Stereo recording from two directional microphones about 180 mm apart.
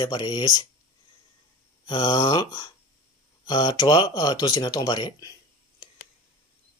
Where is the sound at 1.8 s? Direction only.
25° left (ahead or behind).